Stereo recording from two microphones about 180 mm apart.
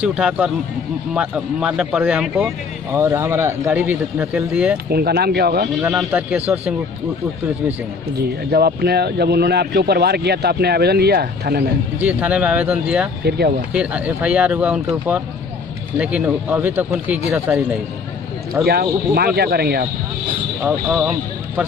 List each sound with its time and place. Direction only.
0.0 s speech: 5° right (ahead or behind)
4.8 s speech: 60° right (ahead or behind)
5.8 s speech: 10° right (ahead or behind)
8.5 s speech: 60° right (ahead or behind)
12.0 s speech: 10° right (ahead or behind)
13.2 s speech: 65° right (ahead or behind)
13.7 s speech: 5° right (ahead or behind)
18.7 s speech: 60° right (ahead or behind)
20.6 s speech: 5° right (ahead or behind)